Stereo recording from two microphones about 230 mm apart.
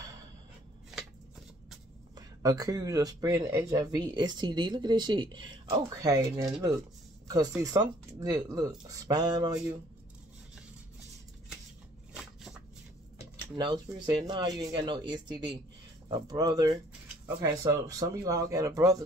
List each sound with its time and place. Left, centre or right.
2.1 s speech: centre
13.6 s speech: centre